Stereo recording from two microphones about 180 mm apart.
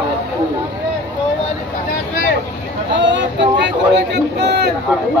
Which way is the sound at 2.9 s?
80° right.